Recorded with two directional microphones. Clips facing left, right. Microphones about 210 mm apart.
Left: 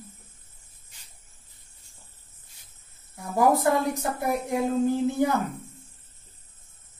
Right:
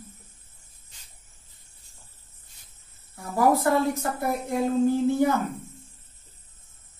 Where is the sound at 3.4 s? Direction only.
15° left (ahead or behind).